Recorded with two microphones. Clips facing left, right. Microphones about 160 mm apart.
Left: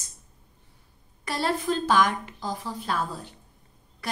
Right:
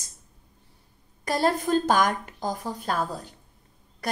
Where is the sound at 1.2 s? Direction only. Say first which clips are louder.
Right 4 dB; 45° right (ahead or behind).